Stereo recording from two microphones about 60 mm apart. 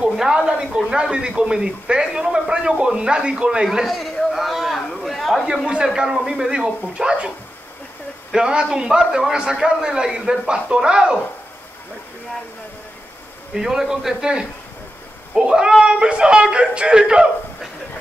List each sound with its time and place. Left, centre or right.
0.1 s a man's voice: centre
3.6 s a sound: centre
5.9 s a man's voice: centre
13.6 s a man's voice: centre